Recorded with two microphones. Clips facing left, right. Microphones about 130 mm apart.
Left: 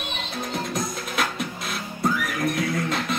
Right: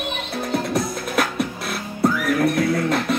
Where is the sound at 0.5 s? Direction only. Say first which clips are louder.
Right 7 dB; 65° right (ahead or behind).